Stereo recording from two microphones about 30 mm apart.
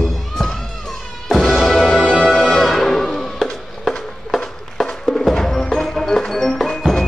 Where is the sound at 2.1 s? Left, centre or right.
Centre.